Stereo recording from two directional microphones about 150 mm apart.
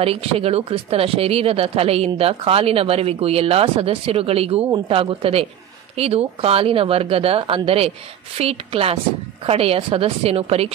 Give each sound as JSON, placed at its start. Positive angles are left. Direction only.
{"t": 0.0, "sound": "speech", "side_deg": -40}